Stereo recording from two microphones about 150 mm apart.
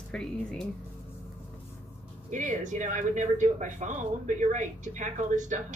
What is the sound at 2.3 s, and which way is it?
Speech, 55° right (ahead or behind).